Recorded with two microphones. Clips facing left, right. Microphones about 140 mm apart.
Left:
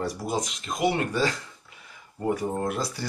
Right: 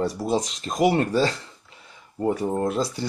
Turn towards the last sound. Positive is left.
turn(degrees=-25)  # may be behind; listen again after turning